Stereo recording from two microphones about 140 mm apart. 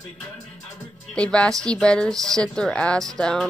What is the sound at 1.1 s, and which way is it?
A woman's voice, 5° left (ahead or behind).